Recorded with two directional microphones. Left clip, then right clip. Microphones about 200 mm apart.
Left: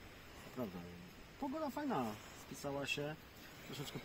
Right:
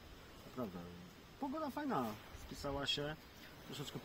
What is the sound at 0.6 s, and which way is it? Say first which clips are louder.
Speech: even; 20° left (ahead or behind).